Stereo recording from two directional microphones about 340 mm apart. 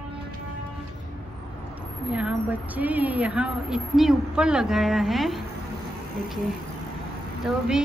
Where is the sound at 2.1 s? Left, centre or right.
Centre.